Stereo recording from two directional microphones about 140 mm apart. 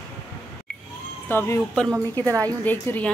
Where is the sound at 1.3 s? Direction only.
15° left (ahead or behind).